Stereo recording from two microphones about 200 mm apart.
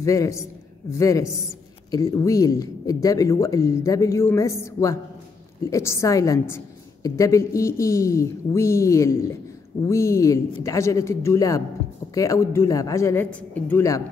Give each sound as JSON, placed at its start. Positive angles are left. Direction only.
{"t": 0.0, "sound": "a woman's voice", "side_deg": 15}